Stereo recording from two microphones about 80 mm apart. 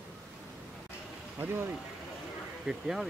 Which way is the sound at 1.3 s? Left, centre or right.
Right.